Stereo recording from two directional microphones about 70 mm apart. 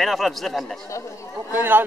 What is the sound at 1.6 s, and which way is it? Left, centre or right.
Speech, right.